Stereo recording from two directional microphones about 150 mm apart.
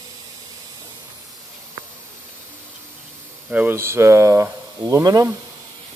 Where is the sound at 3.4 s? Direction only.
10° right (ahead or behind).